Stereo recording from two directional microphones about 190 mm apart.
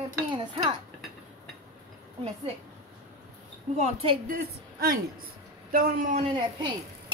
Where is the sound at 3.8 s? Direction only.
30° right (ahead or behind).